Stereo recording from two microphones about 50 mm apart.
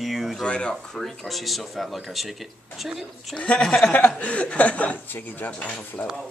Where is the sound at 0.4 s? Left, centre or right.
Centre.